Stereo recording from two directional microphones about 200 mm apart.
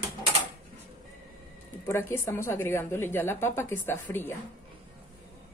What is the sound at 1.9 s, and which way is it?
A woman's voice, 10° left (ahead or behind).